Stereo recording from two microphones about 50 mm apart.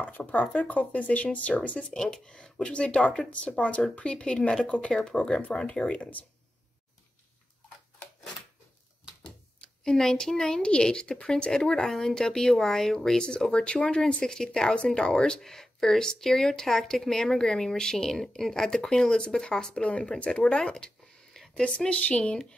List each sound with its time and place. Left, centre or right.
0.0 s speech: left
9.8 s speech: centre
13.5 s speech: centre